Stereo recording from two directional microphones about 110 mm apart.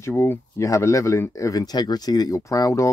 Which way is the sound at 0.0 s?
25° left (ahead or behind).